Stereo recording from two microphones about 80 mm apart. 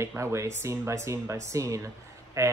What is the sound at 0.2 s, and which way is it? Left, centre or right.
A woman's voice, right.